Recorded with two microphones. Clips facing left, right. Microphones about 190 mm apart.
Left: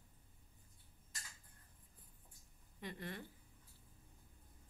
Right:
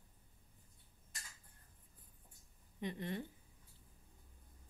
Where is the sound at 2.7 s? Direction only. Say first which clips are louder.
Right 6 dB; 20° right (ahead or behind).